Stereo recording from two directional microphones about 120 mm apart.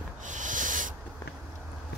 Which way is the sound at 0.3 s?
90° right.